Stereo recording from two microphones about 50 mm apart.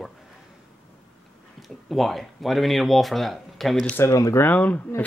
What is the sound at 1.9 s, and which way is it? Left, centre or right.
Speech, centre.